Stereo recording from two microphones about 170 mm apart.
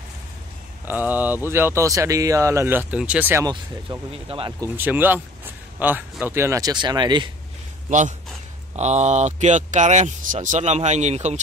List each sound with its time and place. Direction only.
0.8 s speech: 10° right (ahead or behind)
4.1 s speech: 30° right (ahead or behind)
4.6 s speech: 10° right (ahead or behind)
8.7 s speech: 40° right (ahead or behind)